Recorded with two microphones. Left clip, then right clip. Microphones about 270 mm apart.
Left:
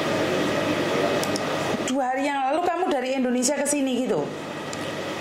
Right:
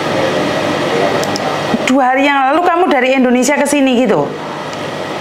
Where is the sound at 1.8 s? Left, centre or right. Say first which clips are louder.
Right 17 dB; right.